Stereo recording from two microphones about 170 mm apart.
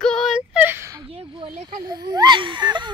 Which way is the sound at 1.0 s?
35° right (ahead or behind).